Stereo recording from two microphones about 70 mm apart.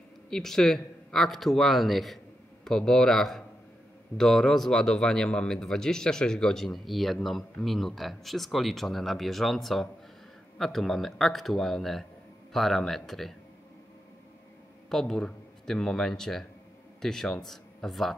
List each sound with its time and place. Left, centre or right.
0.3 s a man's voice: centre
14.9 s speech: centre